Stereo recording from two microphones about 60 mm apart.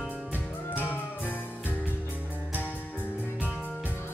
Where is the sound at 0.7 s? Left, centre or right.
Left.